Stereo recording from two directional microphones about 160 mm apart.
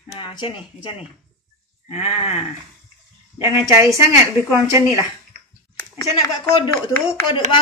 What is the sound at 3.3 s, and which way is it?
Speech, 20° right (ahead or behind).